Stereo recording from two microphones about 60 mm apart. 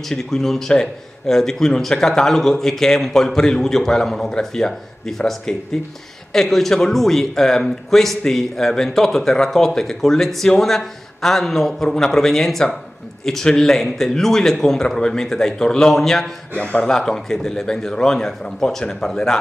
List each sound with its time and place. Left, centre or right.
0.1 s a man's voice: centre
16.5 s speech: left
16.9 s a man's voice: centre